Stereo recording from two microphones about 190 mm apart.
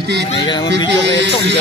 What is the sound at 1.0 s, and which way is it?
Speech, 70° right (ahead or behind).